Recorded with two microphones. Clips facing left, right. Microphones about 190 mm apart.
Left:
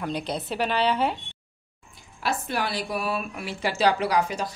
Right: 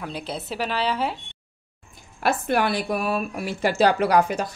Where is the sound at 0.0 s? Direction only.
5° right (ahead or behind).